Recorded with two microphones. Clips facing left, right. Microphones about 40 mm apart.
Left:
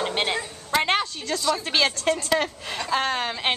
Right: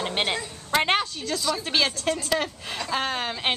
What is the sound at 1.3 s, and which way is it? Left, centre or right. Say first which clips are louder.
A woman's voice: left 2 dB; centre.